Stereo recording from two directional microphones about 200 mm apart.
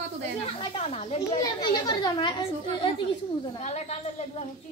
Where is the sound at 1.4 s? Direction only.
20° left (ahead or behind).